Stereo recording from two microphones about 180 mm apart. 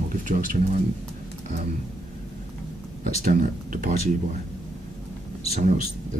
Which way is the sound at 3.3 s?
50° right (ahead or behind).